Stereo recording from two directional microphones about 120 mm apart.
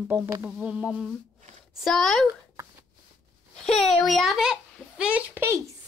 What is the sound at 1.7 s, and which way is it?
Speech, centre (ahead or behind).